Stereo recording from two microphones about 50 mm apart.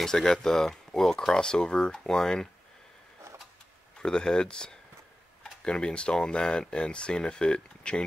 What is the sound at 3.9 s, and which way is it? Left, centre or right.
Speech, centre.